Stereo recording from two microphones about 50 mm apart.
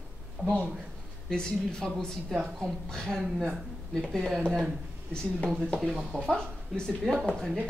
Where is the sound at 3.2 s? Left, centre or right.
Centre.